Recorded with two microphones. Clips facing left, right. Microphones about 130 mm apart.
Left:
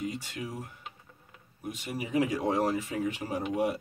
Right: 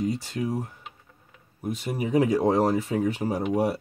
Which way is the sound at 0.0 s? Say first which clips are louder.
Right 8 dB; 35° right (ahead or behind).